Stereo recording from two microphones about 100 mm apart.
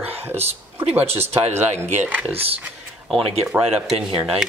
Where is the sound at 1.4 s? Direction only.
90° right.